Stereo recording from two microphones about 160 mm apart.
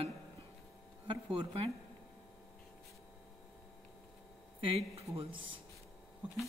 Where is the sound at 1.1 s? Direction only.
35° right (ahead or behind).